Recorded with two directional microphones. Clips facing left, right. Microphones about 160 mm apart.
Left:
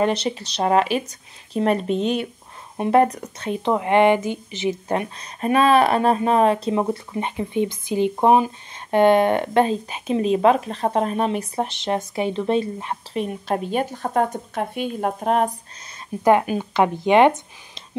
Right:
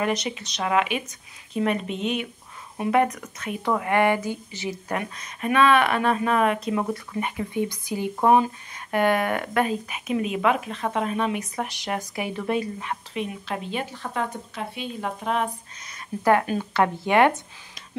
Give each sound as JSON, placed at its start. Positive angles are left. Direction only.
{"t": 0.0, "sound": "speech", "side_deg": 30}
{"t": 13.1, "sound": "speech", "side_deg": 40}
{"t": 16.3, "sound": "speech", "side_deg": 15}